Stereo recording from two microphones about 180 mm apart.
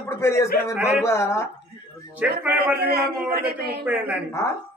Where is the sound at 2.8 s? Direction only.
60° right (ahead or behind).